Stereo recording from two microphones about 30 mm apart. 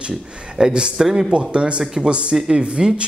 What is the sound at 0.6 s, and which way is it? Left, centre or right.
Speech, right.